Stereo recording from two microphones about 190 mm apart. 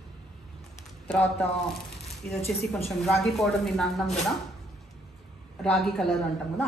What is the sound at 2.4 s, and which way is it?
A woman's voice, centre (ahead or behind).